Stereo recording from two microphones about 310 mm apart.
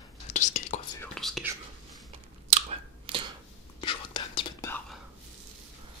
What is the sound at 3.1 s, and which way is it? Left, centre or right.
Finger snapping, centre.